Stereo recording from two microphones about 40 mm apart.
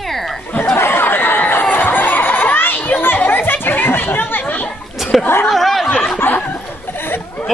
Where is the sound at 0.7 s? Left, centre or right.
Left.